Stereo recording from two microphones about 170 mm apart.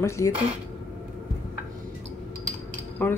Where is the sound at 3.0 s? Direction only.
10° left (ahead or behind).